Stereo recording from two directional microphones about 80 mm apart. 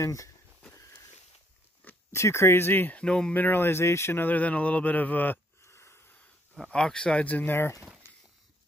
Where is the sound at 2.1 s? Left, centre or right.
Left.